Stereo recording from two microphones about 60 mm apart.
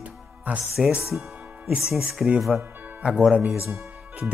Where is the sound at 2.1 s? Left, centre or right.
Centre.